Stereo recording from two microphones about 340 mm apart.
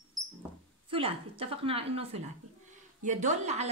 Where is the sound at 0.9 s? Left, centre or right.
Centre.